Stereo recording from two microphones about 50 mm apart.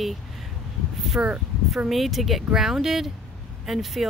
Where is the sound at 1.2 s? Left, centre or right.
Right.